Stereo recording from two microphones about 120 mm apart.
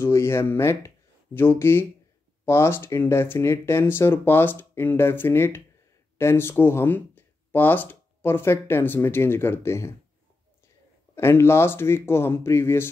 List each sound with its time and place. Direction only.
0.0 s speech: 20° left (ahead or behind)
11.1 s speech: 20° left (ahead or behind)